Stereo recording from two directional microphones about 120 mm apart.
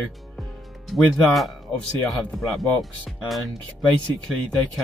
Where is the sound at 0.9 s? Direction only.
Centre (ahead or behind).